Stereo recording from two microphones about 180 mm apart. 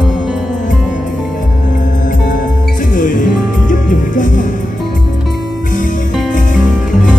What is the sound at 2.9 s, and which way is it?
Music, 45° left (ahead or behind).